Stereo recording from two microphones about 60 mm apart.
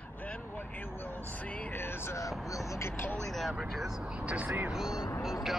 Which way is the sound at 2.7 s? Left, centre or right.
Left.